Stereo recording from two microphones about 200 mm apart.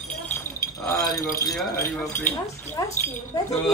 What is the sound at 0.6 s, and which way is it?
Chink, 15° left (ahead or behind).